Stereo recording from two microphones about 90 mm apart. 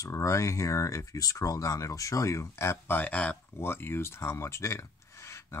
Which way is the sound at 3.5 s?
25° left (ahead or behind).